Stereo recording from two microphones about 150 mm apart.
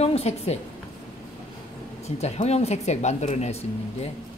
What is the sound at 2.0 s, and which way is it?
A woman's voice, 45° left (ahead or behind).